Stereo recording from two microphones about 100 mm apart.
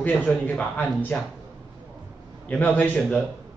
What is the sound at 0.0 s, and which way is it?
A man's voice, 10° left (ahead or behind).